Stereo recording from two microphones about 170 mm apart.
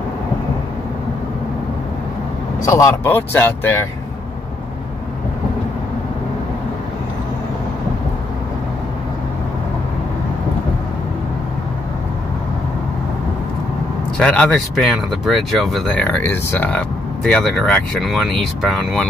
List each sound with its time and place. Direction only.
2.6 s speech: 20° left (ahead or behind)
14.1 s speech: 5° left (ahead or behind)